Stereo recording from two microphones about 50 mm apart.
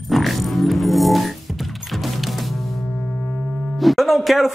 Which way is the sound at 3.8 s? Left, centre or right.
Centre.